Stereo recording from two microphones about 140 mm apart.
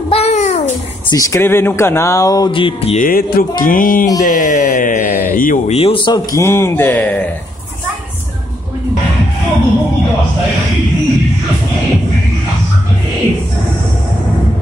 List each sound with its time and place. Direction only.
0.1 s babbling: 50° left (ahead or behind)
1.1 s speech: 20° left (ahead or behind); by 3.0 s 40° left (ahead or behind)
3.0 s mantra: 90° left
4.2 s speech: 70° left (ahead or behind)
5.7 s speech: 40° left (ahead or behind)
6.3 s speech: 20° left (ahead or behind)